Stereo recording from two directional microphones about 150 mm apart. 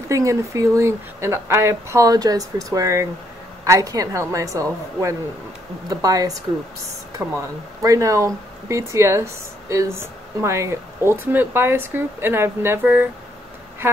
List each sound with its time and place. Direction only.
0.1 s speech: 20° right (ahead or behind)